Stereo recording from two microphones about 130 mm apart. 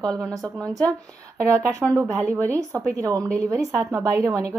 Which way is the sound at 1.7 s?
25° right (ahead or behind).